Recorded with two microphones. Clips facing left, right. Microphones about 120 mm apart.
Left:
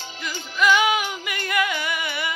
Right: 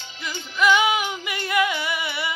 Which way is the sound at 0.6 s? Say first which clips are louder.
Even; 20° right (ahead or behind).